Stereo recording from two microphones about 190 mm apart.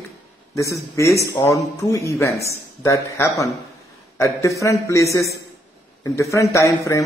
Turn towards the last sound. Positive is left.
turn(degrees=15)  # may be behind; listen again after turning